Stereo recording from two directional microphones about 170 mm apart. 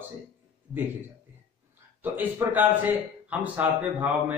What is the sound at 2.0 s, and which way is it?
A man's voice, 10° right (ahead or behind).